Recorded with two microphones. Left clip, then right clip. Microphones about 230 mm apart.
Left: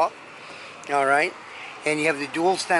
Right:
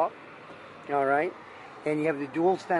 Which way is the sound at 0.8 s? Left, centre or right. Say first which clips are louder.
Left 5 dB; centre.